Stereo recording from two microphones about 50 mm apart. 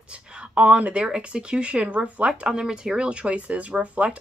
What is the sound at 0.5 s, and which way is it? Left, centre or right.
Speech, right.